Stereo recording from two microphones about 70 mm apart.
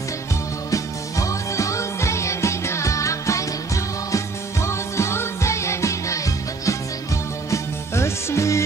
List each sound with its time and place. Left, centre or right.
0.7 s music: left